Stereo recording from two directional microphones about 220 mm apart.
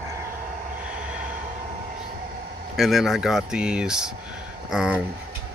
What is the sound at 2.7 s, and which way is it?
Speech, centre (ahead or behind).